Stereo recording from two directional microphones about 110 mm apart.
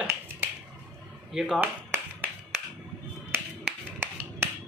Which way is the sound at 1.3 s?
5° right (ahead or behind).